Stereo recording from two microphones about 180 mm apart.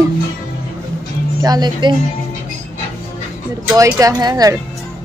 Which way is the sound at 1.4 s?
20° right (ahead or behind).